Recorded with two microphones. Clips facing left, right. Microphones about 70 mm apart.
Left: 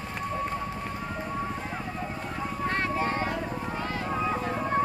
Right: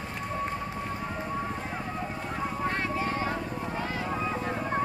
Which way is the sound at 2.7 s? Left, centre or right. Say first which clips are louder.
Left 2 dB; left.